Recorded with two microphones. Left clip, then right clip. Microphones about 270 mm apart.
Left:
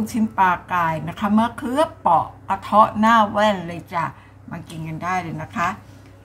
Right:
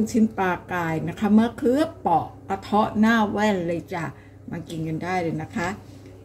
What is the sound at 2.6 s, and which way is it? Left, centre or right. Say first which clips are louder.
A woman's voice: left 7 dB; left.